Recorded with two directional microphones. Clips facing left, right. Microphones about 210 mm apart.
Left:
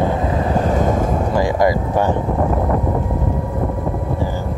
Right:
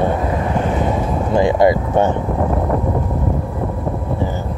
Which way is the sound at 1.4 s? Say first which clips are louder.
Right 4 dB; 25° right (ahead or behind).